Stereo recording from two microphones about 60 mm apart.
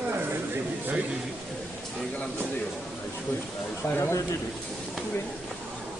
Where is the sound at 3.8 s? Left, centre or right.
Left.